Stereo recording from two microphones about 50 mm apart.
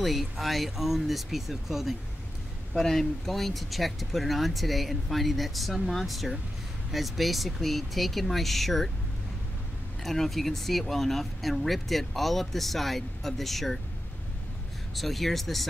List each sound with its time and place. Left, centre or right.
0.0 s speech: centre
2.7 s speech: centre
10.0 s speech: centre
15.0 s speech: centre